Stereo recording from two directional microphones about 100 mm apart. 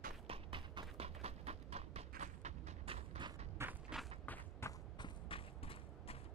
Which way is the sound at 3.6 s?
25° right (ahead or behind).